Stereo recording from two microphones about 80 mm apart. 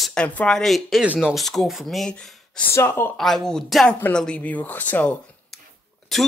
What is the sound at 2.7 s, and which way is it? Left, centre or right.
Speech, left.